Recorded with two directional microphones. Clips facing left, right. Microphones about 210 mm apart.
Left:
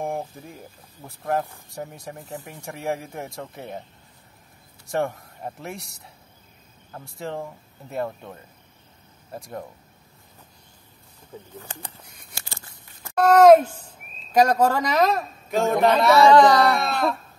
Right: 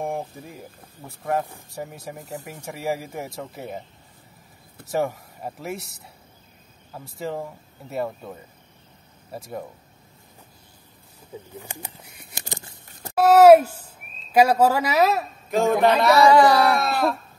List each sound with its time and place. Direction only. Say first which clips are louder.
0.0 s speech: even; centre (ahead or behind)
4.9 s speech: right 1 dB; 5° right (ahead or behind)
11.5 s bird: right 2 dB; 10° right (ahead or behind)
13.1 s speech: right 1 dB; 5° right (ahead or behind)